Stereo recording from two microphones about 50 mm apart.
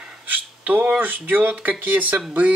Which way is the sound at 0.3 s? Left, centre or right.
Right.